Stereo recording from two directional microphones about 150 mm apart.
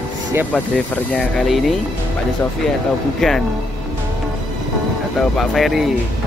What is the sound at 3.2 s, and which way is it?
Speech, centre (ahead or behind).